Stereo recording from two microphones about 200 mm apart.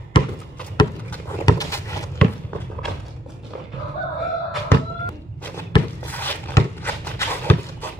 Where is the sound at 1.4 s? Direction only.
15° left (ahead or behind).